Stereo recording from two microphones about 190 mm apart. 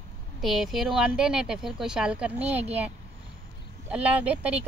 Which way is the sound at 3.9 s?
5° right (ahead or behind).